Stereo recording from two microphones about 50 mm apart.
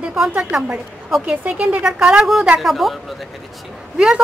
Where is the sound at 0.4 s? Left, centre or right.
Centre.